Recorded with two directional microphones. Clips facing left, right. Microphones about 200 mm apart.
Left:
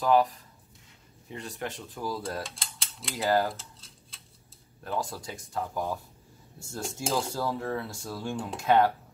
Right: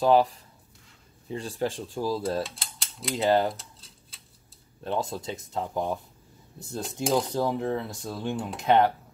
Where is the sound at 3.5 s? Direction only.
Centre (ahead or behind).